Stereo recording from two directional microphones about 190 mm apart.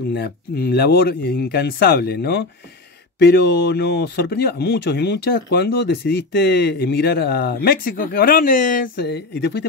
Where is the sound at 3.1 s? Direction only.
65° left (ahead or behind).